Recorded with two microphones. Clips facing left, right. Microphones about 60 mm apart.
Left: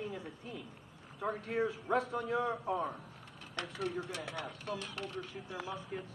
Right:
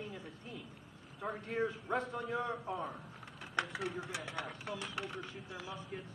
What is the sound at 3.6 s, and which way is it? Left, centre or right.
Speech, centre.